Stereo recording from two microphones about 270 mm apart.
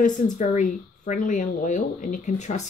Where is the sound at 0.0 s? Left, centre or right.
Left.